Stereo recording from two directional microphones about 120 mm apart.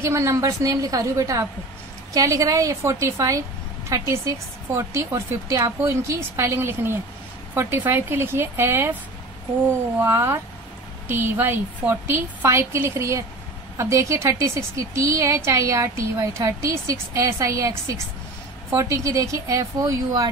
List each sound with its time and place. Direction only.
0.0 s a woman's voice: 25° right (ahead or behind)
10.0 s a woman's voice: 20° right (ahead or behind)